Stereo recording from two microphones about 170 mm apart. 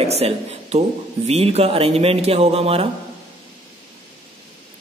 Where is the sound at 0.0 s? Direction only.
35° right (ahead or behind).